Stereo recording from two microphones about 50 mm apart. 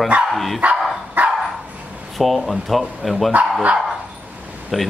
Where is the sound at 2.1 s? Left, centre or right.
Centre.